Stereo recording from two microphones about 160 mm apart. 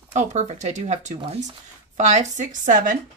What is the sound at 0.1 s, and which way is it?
Speech, 45° right (ahead or behind).